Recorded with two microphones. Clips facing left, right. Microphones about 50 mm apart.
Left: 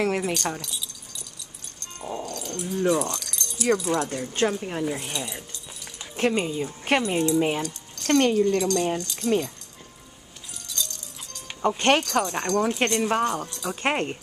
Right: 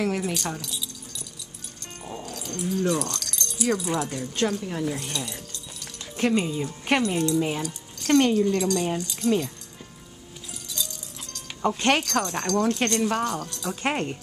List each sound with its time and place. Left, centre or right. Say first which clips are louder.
0.2 s speech: left 2 dB; centre
0.6 s keys jangling: right 1 dB; centre
2.1 s dog: left 1 dB; centre
2.7 s keys jangling: left 3 dB; centre
3.5 s speech: left 2 dB; centre
4.1 s speech: left 1 dB; centre
7.6 s speech: even; centre
10.7 s music: left 1 dB; centre
11.3 s keys jangling: left 1 dB; centre
12.0 s speech: left 1 dB; centre